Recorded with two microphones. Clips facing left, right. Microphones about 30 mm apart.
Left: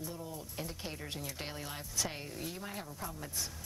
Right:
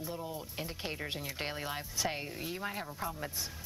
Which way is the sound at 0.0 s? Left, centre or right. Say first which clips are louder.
Right 3 dB; right.